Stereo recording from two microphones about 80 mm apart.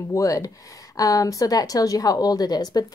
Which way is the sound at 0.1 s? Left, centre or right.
Left.